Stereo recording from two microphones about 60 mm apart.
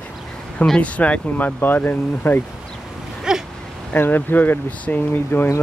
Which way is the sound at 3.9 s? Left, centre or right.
Left.